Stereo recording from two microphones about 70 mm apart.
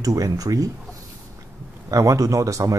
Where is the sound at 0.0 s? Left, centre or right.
Right.